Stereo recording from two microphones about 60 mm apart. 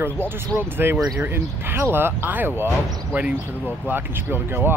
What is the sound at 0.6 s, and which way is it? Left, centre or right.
Speech, right.